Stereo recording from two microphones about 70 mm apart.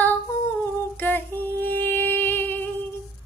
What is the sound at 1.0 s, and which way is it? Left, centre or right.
Female singing, left.